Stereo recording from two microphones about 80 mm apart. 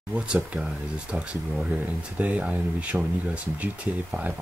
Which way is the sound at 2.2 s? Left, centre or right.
Centre.